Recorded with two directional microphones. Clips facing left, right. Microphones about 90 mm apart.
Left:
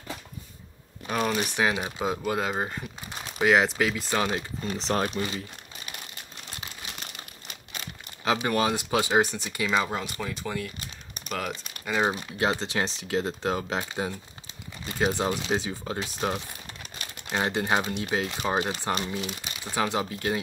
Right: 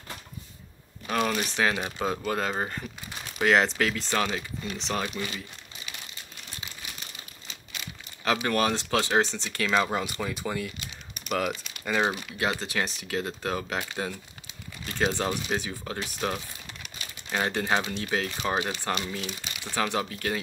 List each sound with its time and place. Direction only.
1.0 s speech: 5° left (ahead or behind)
4.3 s speech: 35° left (ahead or behind)
5.1 s speech: 25° left (ahead or behind)
6.6 s crumpling: 55° left (ahead or behind)
8.2 s speech: 20° left (ahead or behind)
9.8 s speech: 5° right (ahead or behind)
12.1 s speech: 25° left (ahead or behind)